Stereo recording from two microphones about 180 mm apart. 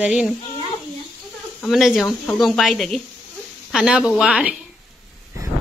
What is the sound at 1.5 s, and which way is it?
Speech, centre (ahead or behind).